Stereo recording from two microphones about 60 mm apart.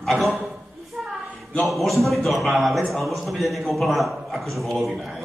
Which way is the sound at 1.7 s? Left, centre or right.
Centre.